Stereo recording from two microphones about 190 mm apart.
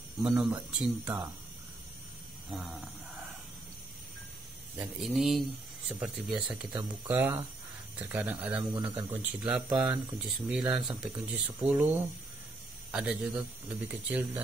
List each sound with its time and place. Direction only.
0.2 s speech: 5° right (ahead or behind)
2.5 s speech: 5° right (ahead or behind)
4.7 s speech: centre (ahead or behind)
8.7 s speech: 25° right (ahead or behind)
9.1 s speech: 10° right (ahead or behind)